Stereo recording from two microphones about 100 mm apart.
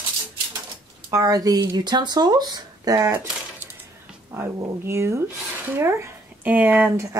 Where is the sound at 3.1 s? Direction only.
20° right (ahead or behind).